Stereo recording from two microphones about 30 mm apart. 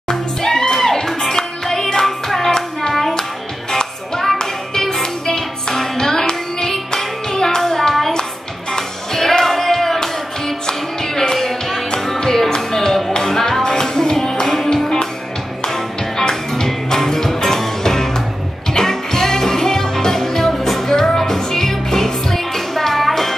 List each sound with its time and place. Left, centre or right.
0.4 s music: centre
3.7 s music: left
11.3 s music: centre
12.2 s music: centre